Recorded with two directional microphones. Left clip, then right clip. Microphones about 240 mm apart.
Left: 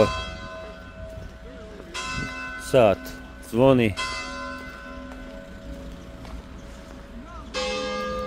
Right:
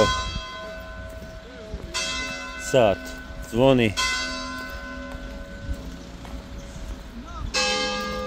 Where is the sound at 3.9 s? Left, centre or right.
Centre.